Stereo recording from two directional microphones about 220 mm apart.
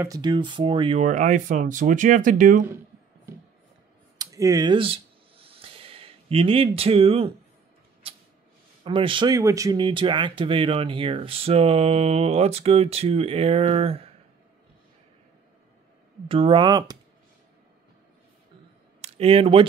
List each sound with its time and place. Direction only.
0.0 s speech: 15° right (ahead or behind); by 2.6 s 35° right (ahead or behind)
4.2 s a sound: 15° right (ahead or behind)
8.8 s speech: 25° right (ahead or behind)
16.3 s speech: 25° right (ahead or behind)
18.9 s speech: 30° right (ahead or behind)